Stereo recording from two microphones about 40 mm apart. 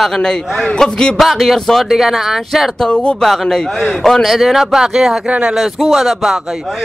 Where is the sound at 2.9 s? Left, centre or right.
Left.